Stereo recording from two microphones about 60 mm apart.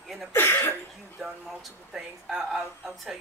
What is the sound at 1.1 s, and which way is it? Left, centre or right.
Speech, centre.